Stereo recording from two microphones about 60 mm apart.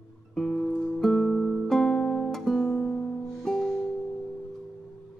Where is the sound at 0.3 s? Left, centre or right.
Centre.